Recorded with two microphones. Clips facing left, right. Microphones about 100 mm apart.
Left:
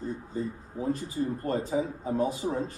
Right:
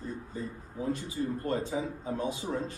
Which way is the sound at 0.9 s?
35° left (ahead or behind).